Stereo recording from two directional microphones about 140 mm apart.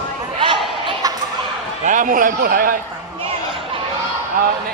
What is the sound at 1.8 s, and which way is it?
Speech, 70° right (ahead or behind).